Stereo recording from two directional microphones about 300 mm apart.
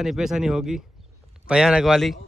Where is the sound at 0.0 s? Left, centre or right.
Centre.